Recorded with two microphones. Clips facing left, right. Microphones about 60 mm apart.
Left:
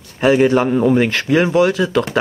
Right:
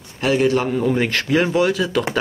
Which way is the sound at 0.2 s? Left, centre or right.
Left.